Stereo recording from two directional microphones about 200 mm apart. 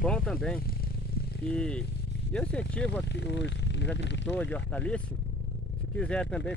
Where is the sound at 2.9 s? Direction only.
60° left (ahead or behind).